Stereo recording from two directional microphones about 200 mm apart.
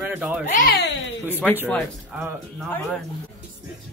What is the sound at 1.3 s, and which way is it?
Speech, 10° left (ahead or behind).